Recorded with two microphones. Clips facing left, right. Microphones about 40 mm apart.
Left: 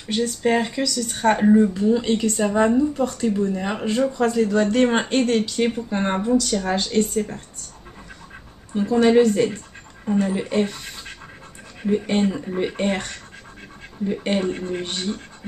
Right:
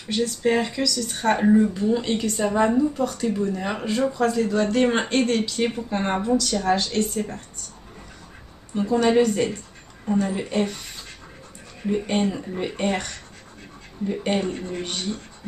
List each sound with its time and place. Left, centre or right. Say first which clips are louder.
0.2 s a woman's voice: left 1 dB; centre
8.9 s speech: left 3 dB; centre
12.2 s a woman's voice: left 2 dB; centre
12.4 s speech: left 3 dB; centre
14.1 s speech: left 1 dB; centre
14.5 s a man's voice: left 4 dB; left
14.9 s a woman's voice: left 2 dB; centre